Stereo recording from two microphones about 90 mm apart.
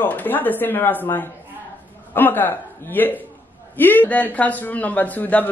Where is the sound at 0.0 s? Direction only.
20° left (ahead or behind).